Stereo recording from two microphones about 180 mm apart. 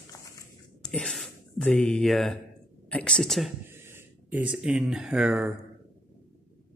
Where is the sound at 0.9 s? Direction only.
5° left (ahead or behind).